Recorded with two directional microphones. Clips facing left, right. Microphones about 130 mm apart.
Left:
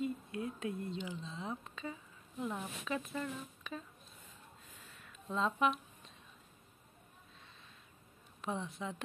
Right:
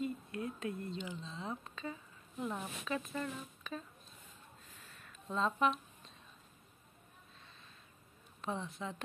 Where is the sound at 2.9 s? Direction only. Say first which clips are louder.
Even; 10° left (ahead or behind).